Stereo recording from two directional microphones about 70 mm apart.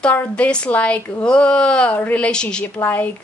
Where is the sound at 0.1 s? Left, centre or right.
Left.